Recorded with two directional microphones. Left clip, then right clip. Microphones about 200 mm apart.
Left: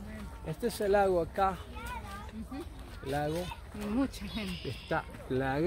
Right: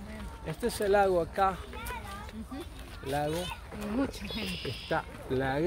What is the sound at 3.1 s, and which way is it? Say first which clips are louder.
A child's voice: right 2 dB; centre (ahead or behind).